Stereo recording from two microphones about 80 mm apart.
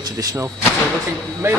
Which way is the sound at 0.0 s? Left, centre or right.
Right.